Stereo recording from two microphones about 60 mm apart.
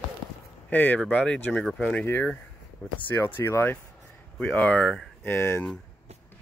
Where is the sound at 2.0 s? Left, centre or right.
Left.